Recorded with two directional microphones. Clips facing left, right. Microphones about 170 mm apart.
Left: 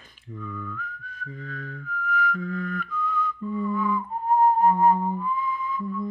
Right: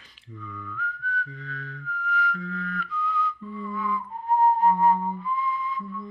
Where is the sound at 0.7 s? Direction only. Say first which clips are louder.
Right 6 dB; 45° left (ahead or behind).